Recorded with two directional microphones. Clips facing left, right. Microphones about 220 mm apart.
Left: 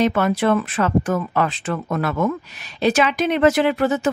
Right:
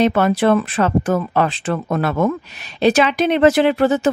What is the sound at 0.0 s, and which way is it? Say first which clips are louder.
Speech: right 3 dB; 30° right (ahead or behind).